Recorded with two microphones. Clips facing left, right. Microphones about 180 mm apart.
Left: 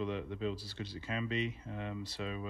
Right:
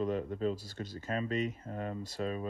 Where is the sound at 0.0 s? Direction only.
45° right (ahead or behind).